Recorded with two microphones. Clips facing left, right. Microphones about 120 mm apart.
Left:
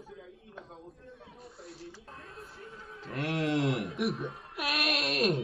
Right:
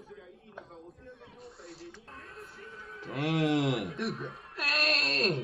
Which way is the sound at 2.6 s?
25° left (ahead or behind).